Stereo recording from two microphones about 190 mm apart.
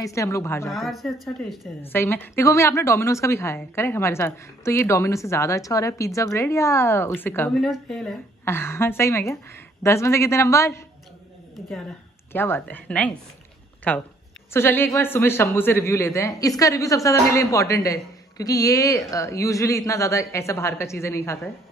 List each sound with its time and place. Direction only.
0.0 s a woman's voice: 15° left (ahead or behind)
0.7 s speech: centre (ahead or behind)
1.8 s a woman's voice: 10° left (ahead or behind)
8.5 s a woman's voice: 10° left (ahead or behind)
12.3 s a woman's voice: 10° left (ahead or behind)